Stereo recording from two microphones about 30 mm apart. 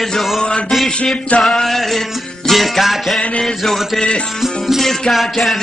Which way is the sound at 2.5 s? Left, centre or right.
Centre.